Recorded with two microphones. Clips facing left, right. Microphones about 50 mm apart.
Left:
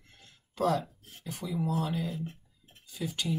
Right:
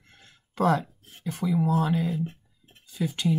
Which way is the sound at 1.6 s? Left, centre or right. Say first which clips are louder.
Right 5 dB; right.